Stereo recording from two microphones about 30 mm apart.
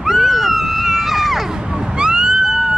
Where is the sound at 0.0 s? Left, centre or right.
Centre.